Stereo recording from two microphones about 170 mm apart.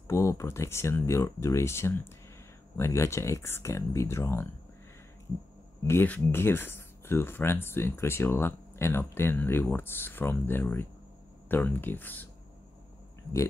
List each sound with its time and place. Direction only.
0.1 s speech: 15° left (ahead or behind)
5.9 s speech: 10° left (ahead or behind)